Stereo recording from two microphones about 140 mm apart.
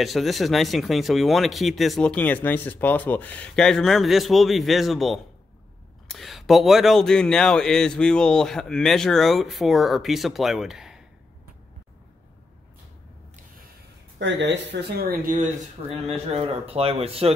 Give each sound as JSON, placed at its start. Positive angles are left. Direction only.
{"t": 0.0, "sound": "speech", "side_deg": 0}
{"t": 15.0, "sound": "speech", "side_deg": -90}
{"t": 15.9, "sound": "speech", "side_deg": -45}